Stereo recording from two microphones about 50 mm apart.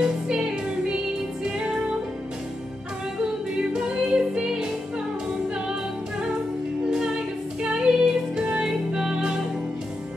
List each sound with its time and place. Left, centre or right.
0.0 s music: centre
3.5 s music: centre
6.9 s music: centre